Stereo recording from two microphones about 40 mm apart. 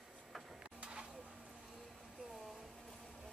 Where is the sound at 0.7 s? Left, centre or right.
Right.